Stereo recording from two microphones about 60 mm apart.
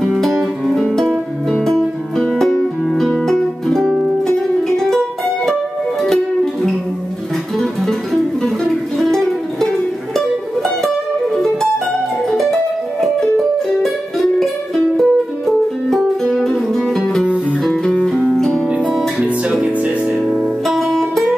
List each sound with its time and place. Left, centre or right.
0.0 s music: centre
7.5 s music: centre
11.3 s music: centre
18.0 s music: centre
19.2 s music: centre
20.6 s music: centre